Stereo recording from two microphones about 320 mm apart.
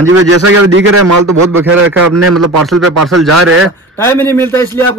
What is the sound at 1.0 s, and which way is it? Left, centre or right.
Speech, right.